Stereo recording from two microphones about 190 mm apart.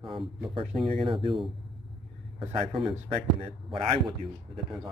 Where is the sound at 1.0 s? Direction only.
25° right (ahead or behind).